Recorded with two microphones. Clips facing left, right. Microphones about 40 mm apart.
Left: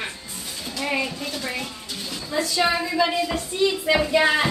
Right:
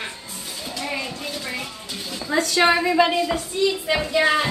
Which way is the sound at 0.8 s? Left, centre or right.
Centre.